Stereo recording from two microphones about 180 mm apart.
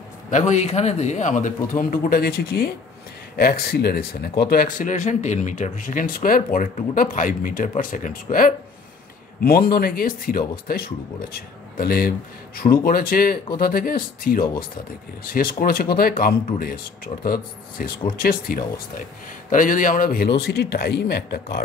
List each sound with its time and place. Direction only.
0.5 s speech: 40° left (ahead or behind); by 4.6 s 60° left (ahead or behind)
4.7 s speech: 45° left (ahead or behind); by 21.6 s 60° left (ahead or behind)